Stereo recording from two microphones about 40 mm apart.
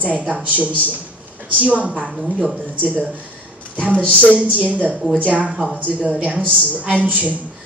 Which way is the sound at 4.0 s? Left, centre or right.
Left.